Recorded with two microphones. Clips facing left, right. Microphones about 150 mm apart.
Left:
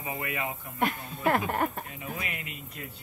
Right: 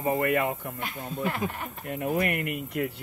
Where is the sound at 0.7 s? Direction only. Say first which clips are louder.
Left 3 dB; 55° left (ahead or behind).